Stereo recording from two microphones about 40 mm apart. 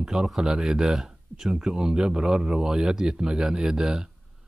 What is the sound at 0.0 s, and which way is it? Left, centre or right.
Speech, centre.